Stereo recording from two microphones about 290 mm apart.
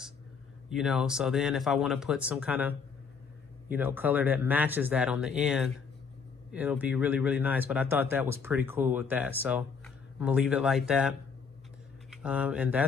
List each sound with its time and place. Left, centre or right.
0.7 s speech: centre